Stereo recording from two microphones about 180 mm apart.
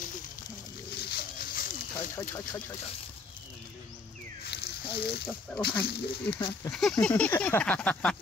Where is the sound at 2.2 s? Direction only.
20° left (ahead or behind).